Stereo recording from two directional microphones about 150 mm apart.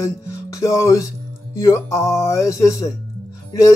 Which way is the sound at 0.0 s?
20° left (ahead or behind).